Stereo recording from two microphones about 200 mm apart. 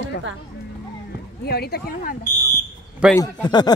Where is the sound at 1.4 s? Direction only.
50° left (ahead or behind).